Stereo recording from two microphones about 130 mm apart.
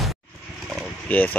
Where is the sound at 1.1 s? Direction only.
15° left (ahead or behind).